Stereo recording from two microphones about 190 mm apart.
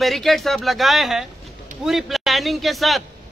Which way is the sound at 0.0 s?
Centre (ahead or behind).